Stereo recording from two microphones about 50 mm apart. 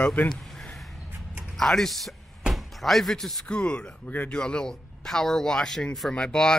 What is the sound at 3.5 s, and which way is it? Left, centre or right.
Speech, left.